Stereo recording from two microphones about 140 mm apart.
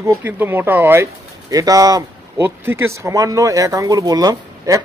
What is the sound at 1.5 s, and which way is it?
Speech, 25° right (ahead or behind).